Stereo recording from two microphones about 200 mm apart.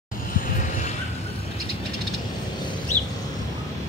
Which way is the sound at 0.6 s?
40° left (ahead or behind).